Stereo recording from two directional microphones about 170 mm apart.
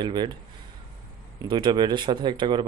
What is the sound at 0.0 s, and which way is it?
Speech, 25° right (ahead or behind).